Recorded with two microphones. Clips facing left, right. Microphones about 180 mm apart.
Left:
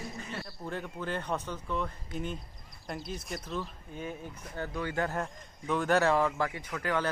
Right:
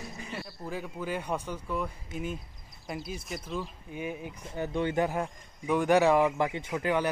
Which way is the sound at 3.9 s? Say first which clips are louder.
Right 3 dB; 10° right (ahead or behind).